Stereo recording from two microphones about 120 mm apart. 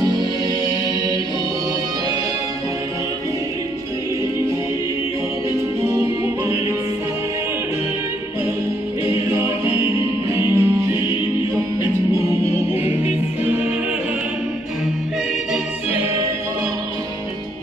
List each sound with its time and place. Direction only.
0.0 s music: 35° right (ahead or behind)
5.9 s music: 25° right (ahead or behind)
9.0 s music: 20° right (ahead or behind)
12.7 s music: 15° right (ahead or behind)